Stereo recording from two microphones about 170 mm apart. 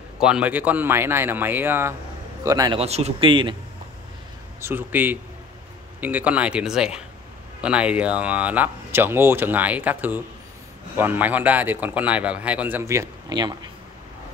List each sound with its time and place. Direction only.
0.2 s a man's voice: 5° right (ahead or behind)
2.8 s speech: 35° right (ahead or behind)
4.6 s speech: 15° right (ahead or behind)